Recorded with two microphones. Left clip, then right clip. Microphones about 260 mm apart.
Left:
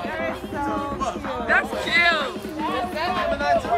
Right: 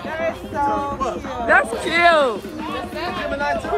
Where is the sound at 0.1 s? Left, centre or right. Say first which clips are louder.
Right 4 dB; centre.